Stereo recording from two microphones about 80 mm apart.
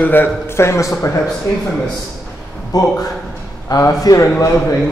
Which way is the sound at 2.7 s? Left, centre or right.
Left.